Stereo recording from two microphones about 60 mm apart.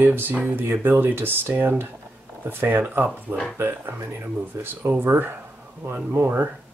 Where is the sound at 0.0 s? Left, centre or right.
Right.